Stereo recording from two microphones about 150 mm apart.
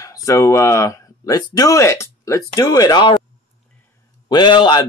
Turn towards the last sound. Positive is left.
turn(degrees=30)  # may be behind; listen again after turning